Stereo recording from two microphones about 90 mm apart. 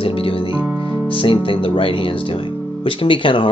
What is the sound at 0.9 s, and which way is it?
Speech, 75° left (ahead or behind).